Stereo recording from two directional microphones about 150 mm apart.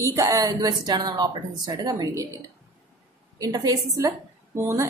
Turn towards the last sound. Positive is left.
turn(degrees=-15)  # may be behind; listen again after turning